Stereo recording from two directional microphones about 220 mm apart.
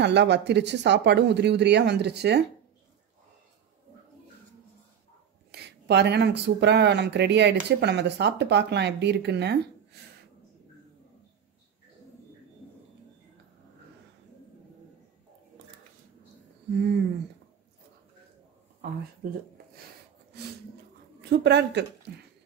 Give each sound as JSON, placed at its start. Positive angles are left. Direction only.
{"t": 0.0, "sound": "speech", "side_deg": -50}
{"t": 5.5, "sound": "speech", "side_deg": -50}
{"t": 19.2, "sound": "speech", "side_deg": -40}
{"t": 21.2, "sound": "a woman's voice", "side_deg": -50}